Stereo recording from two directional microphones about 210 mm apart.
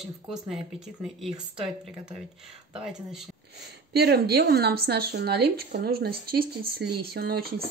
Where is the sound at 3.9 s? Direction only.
50° right (ahead or behind).